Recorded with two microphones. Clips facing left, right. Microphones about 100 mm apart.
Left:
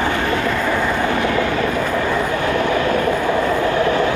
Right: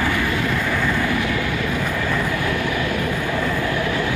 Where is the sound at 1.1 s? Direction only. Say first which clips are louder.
Left 5 dB; 45° left (ahead or behind); by 2.5 s 25° left (ahead or behind).